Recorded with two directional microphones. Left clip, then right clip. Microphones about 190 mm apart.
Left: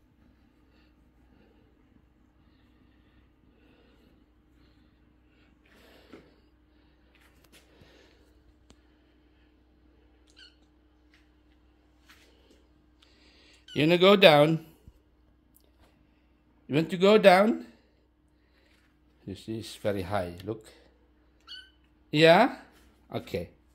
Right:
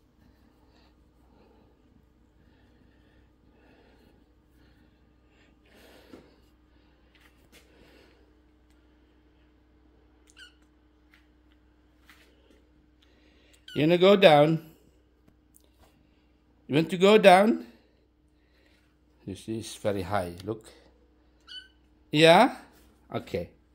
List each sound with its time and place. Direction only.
5.8 s a sound: 5° right (ahead or behind)
7.7 s a sound: centre (ahead or behind)
13.0 s a sound: 5° left (ahead or behind)
13.7 s speech: 5° left (ahead or behind)
16.6 s a man's voice: 5° right (ahead or behind)
19.2 s speech: centre (ahead or behind)
21.5 s cat: 10° right (ahead or behind)
22.1 s speech: centre (ahead or behind)
23.0 s speech: 10° left (ahead or behind)